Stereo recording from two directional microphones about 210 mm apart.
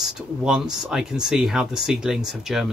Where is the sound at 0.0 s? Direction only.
5° right (ahead or behind).